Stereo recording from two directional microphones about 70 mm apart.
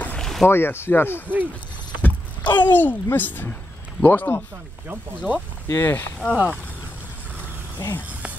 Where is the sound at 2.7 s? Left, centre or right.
Left.